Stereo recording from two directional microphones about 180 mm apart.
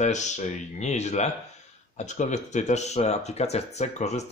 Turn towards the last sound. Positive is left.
turn(degrees=40)  # may be behind; listen again after turning